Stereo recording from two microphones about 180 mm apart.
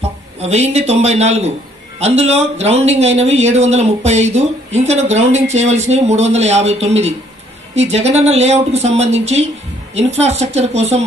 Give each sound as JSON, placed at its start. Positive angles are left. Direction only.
{"t": 0.4, "sound": "speech", "side_deg": -35}